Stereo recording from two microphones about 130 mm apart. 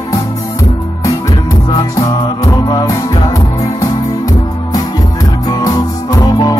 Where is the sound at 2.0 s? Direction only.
30° left (ahead or behind).